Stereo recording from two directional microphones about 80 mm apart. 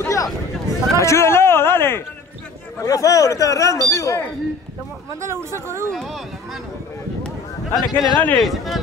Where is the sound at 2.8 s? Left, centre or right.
Left.